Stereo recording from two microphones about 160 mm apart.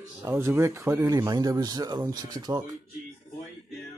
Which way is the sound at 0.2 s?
15° right (ahead or behind).